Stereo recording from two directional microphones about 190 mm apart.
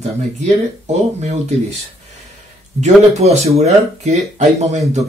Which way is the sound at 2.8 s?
35° right (ahead or behind).